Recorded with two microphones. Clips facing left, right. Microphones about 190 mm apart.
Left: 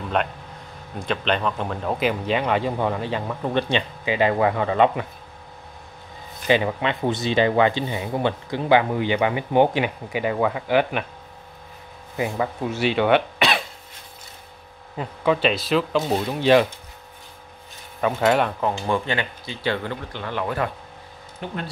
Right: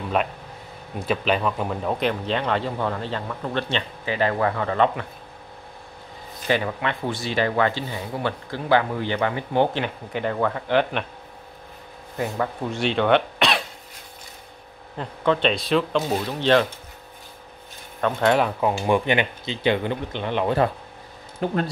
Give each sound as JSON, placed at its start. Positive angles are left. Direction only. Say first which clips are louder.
{"t": 0.2, "sound": "speech", "louder": "even", "side_deg": -5}
{"t": 6.4, "sound": "speech", "louder": "left 3 dB", "side_deg": 20}
{"t": 12.2, "sound": "speech", "louder": "left 1 dB", "side_deg": 5}
{"t": 15.0, "sound": "speech", "louder": "left 1 dB", "side_deg": 5}
{"t": 16.1, "sound": "speech", "louder": "left 4 dB", "side_deg": 15}
{"t": 18.0, "sound": "speech", "louder": "even", "side_deg": 5}
{"t": 18.6, "sound": "speech", "louder": "right 3 dB", "side_deg": -15}
{"t": 21.4, "sound": "speech", "louder": "right 7 dB", "side_deg": -40}